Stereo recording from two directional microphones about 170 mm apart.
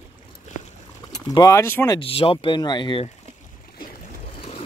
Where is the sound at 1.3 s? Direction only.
20° left (ahead or behind).